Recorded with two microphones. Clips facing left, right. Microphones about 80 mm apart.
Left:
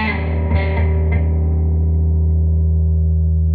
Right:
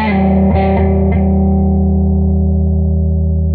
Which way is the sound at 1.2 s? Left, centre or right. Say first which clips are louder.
Right 11 dB; right.